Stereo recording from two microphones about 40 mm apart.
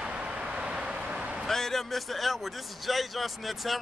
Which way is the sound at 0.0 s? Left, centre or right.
Right.